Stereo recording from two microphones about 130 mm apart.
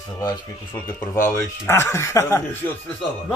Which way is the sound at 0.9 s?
20° left (ahead or behind).